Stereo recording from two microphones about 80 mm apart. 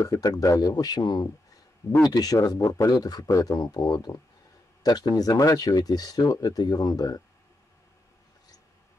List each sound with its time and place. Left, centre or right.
0.0 s speech: left
2.3 s speech: left